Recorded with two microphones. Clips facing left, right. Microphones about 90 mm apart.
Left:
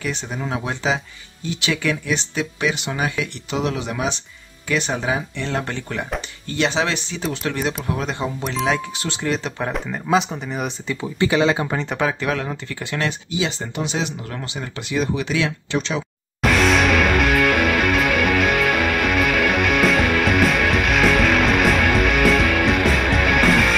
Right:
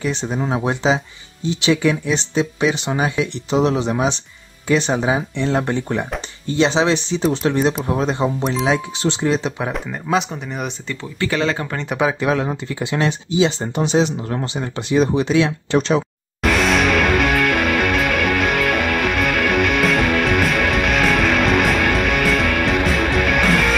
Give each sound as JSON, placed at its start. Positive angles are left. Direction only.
{"t": 0.0, "sound": "speech", "side_deg": -25}
{"t": 9.6, "sound": "speech", "side_deg": 0}
{"t": 11.0, "sound": "speech", "side_deg": 15}
{"t": 12.0, "sound": "speech", "side_deg": -15}
{"t": 16.4, "sound": "music", "side_deg": 0}